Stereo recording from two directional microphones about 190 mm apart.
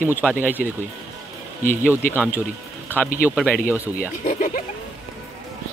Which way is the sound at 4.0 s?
45° left (ahead or behind).